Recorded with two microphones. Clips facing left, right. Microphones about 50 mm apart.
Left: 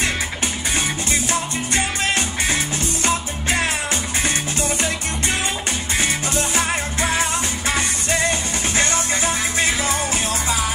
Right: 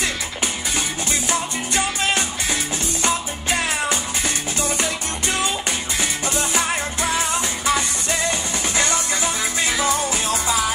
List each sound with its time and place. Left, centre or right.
1.3 s music: left
7.0 s music: left